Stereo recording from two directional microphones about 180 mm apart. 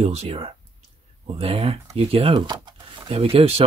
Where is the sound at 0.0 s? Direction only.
35° right (ahead or behind).